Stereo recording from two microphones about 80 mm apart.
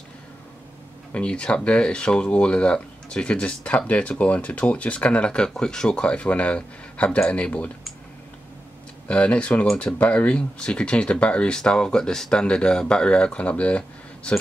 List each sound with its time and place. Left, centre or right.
1.1 s speech: centre
9.0 s speech: centre